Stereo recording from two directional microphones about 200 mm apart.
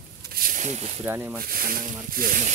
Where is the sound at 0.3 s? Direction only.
45° right (ahead or behind).